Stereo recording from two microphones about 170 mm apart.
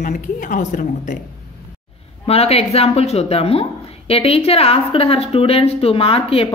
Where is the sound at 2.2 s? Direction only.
35° left (ahead or behind).